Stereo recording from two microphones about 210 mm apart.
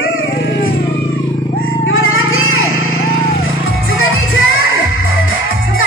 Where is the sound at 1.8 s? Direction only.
70° left (ahead or behind).